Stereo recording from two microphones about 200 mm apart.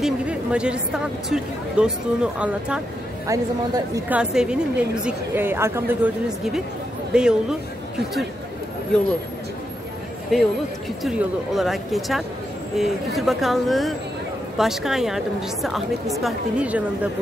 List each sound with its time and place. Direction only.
0.0 s a woman's voice: 5° right (ahead or behind)
3.3 s a woman's voice: 15° right (ahead or behind)
4.2 s a woman's voice: 5° right (ahead or behind)
10.3 s a woman's voice: centre (ahead or behind)